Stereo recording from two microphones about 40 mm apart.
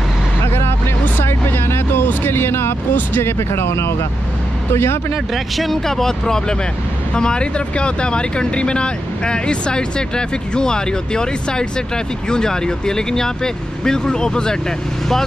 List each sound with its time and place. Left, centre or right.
1.2 s music: left
2.2 s speech: left
5.1 s speech: centre
5.7 s speech: centre